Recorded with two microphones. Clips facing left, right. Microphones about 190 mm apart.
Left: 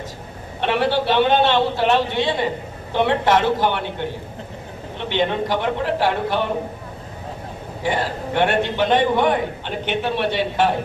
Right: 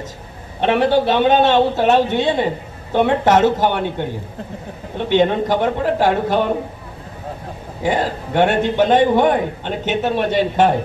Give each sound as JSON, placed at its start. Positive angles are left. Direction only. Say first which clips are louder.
{"t": 0.7, "sound": "a man's voice", "louder": "right 4 dB", "side_deg": -50}
{"t": 4.9, "sound": "a man's voice", "louder": "right 6 dB", "side_deg": -45}
{"t": 7.8, "sound": "a man's voice", "louder": "right 4 dB", "side_deg": -45}